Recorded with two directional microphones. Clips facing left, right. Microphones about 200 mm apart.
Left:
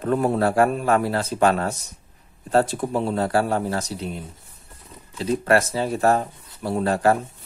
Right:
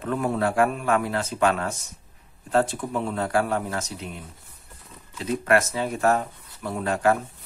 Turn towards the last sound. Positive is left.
turn(degrees=35)  # may be behind; listen again after turning